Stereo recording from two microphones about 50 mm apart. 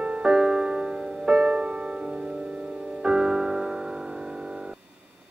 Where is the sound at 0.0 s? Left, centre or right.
Right.